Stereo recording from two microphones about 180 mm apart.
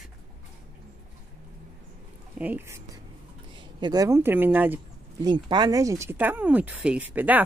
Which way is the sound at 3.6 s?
25° right (ahead or behind).